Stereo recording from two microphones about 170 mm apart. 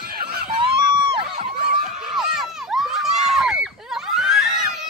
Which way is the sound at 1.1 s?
40° right (ahead or behind).